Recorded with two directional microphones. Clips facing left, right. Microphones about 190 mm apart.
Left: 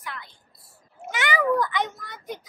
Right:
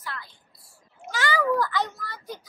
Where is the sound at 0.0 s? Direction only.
20° left (ahead or behind).